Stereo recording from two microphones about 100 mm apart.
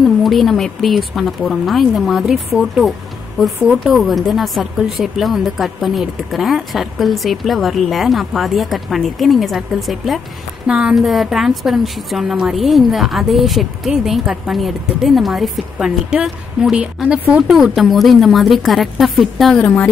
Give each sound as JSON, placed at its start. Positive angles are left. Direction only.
{"t": 0.0, "sound": "a woman's voice", "side_deg": 0}
{"t": 19.6, "sound": "speech", "side_deg": 15}